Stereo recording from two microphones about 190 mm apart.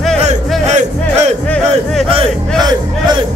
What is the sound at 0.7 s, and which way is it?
Music, 35° right (ahead or behind).